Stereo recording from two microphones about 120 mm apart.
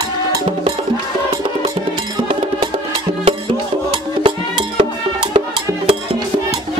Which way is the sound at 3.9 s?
50° right (ahead or behind).